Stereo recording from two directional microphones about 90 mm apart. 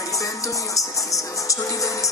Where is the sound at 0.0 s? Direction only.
35° left (ahead or behind).